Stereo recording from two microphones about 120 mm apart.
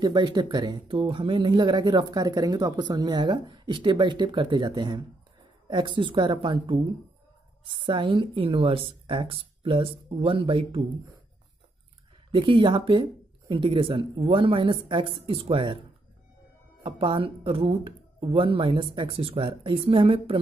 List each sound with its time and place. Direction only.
0.0 s speech: 40° right (ahead or behind)
7.8 s speech: 40° right (ahead or behind)
12.3 s speech: 45° right (ahead or behind)
16.8 s speech: 45° right (ahead or behind)